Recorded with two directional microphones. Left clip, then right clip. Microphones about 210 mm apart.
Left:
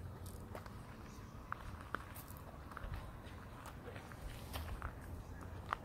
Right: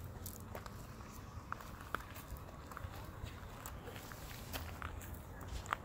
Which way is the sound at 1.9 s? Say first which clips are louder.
Right 2 dB; 5° right (ahead or behind).